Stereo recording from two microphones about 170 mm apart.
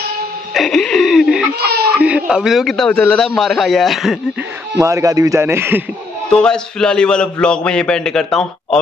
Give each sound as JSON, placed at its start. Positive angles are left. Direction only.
{"t": 0.6, "sound": "a man's voice", "side_deg": 5}
{"t": 1.6, "sound": "a child's voice", "side_deg": -70}
{"t": 2.0, "sound": "a man's voice", "side_deg": -10}
{"t": 4.7, "sound": "a man's voice", "side_deg": -15}
{"t": 6.3, "sound": "a man's voice", "side_deg": 5}